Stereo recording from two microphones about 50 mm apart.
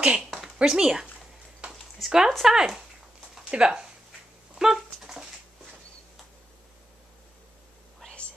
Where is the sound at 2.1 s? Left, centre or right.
Centre.